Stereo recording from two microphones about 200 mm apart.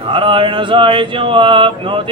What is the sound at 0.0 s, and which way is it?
Mantra, 25° right (ahead or behind).